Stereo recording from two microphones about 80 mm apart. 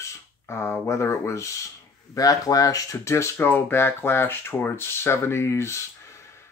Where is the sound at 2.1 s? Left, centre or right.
Left.